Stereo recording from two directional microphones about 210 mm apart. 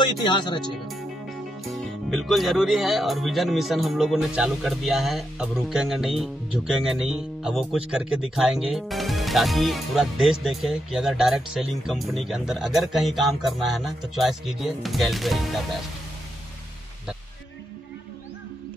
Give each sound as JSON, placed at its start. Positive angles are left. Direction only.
{"t": 0.0, "sound": "speech", "side_deg": 20}
{"t": 1.6, "sound": "speech", "side_deg": 0}